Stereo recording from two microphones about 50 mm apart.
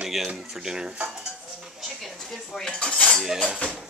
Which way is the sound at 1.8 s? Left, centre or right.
Centre.